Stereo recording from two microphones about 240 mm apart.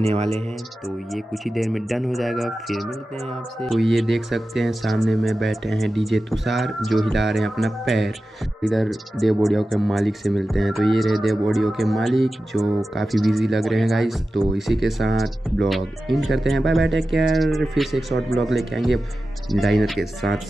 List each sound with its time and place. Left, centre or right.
0.0 s speech: right
0.8 s speech: centre